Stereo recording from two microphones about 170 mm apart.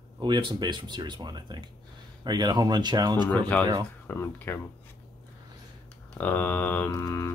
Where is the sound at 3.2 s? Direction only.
10° left (ahead or behind).